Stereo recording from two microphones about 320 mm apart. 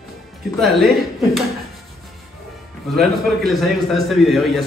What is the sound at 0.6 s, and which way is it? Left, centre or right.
Speech, centre.